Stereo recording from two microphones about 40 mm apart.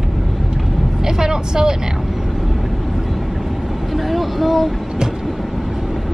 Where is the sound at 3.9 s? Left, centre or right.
Centre.